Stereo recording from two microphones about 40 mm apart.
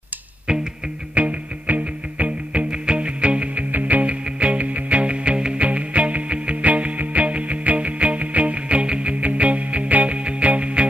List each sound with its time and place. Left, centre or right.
0.5 s music: centre
1.1 s music: right